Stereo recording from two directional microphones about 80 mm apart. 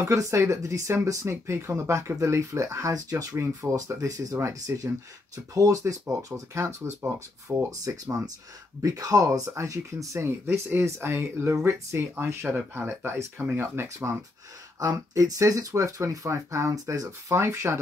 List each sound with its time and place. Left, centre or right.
0.1 s speech: right
7.8 s speech: right
13.8 s speech: right
17.3 s speech: right